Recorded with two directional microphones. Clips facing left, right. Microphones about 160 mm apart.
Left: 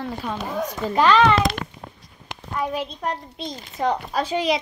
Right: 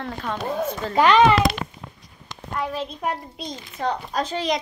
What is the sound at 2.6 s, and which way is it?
Speech, 15° left (ahead or behind).